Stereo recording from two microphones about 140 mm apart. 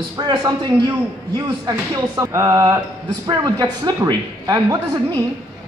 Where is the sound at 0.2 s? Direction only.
30° right (ahead or behind).